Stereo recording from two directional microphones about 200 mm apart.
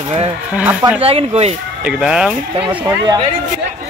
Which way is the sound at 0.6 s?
10° right (ahead or behind).